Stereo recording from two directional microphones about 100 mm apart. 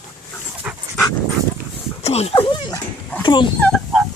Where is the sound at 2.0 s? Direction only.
90° left.